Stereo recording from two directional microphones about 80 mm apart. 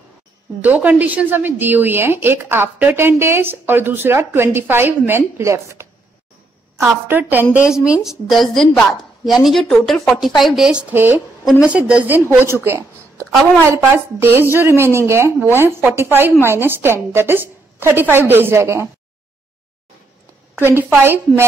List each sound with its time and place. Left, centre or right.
0.6 s a woman's voice: right
5.4 s speech: right
6.8 s a woman's voice: right
7.5 s a woman's voice: centre
10.9 s a woman's voice: right
11.6 s a woman's voice: centre
12.1 s a woman's voice: right
20.5 s a woman's voice: right